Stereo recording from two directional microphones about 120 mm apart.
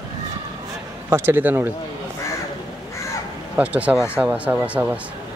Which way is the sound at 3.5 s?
10° right (ahead or behind).